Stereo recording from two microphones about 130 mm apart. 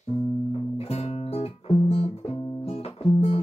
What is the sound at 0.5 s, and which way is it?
Music, 50° left (ahead or behind).